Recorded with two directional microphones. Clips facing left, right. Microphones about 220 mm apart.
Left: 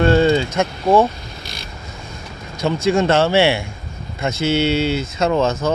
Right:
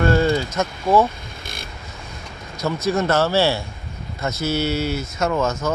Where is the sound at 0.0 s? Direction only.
25° left (ahead or behind).